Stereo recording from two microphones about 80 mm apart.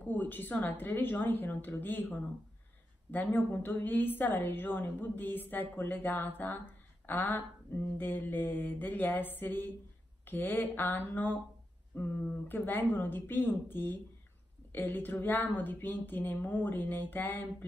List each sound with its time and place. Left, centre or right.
0.0 s a woman's voice: left